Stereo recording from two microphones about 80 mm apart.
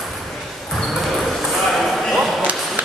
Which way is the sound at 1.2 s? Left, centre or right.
Centre.